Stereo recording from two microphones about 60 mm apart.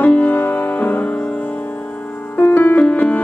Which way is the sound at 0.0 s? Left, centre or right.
Left.